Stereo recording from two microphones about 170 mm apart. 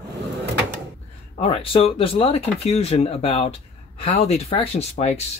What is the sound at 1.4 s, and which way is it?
Speech, 35° left (ahead or behind).